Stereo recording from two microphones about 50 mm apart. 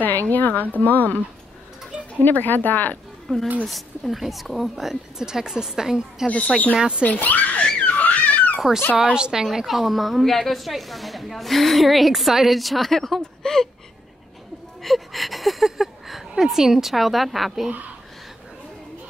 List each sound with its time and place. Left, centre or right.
0.3 s speech: left
2.2 s speech: left
3.3 s a woman's voice: centre
6.2 s speech: left
7.0 s speech: left
7.8 s a sound: left
8.5 s speech: centre
9.4 s a woman's voice: centre
14.8 s speech: centre